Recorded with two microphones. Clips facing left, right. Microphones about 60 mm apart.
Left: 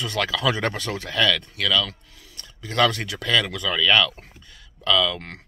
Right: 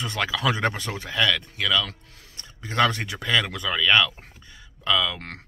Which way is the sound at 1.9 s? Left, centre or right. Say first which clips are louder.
Left 1 dB; right.